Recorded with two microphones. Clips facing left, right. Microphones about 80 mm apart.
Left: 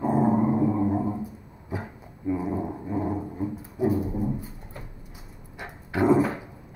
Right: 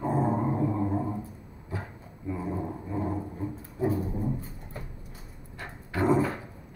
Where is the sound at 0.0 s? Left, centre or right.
Centre.